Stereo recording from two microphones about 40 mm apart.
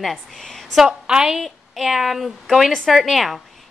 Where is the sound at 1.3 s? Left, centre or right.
Centre.